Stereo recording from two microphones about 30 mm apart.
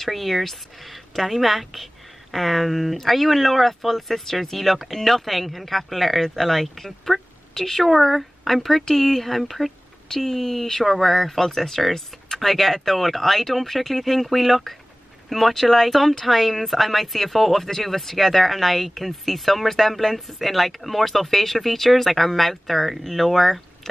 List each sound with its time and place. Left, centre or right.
0.0 s speech: centre
10.0 s speech: centre